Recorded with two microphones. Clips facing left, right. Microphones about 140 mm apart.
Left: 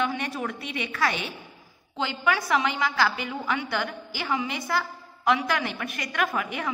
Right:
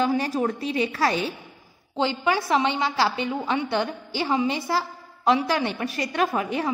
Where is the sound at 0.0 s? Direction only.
35° right (ahead or behind).